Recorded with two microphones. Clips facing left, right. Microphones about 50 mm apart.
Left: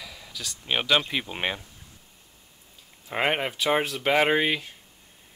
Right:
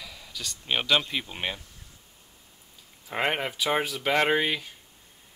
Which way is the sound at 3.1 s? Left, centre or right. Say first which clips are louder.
Left 2 dB; centre.